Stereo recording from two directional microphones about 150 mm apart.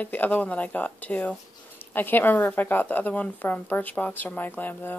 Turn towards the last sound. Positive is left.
turn(degrees=10)  # may be behind; listen again after turning